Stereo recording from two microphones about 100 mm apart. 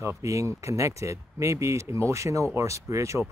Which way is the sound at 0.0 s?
30° right (ahead or behind).